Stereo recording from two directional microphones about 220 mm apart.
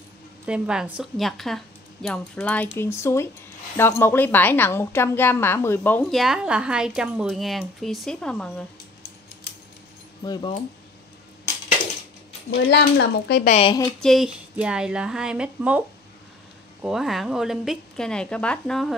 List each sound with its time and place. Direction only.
0.5 s a woman's voice: 5° right (ahead or behind)
6.2 s a woman's voice: 5° right (ahead or behind)
10.2 s a woman's voice: 20° left (ahead or behind)
12.6 s speech: 50° left (ahead or behind)
13.5 s a woman's voice: 25° left (ahead or behind)
14.0 s a woman's voice: centre (ahead or behind)
16.8 s a woman's voice: centre (ahead or behind)